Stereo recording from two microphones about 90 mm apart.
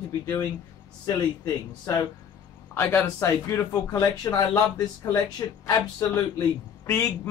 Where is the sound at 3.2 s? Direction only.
35° left (ahead or behind).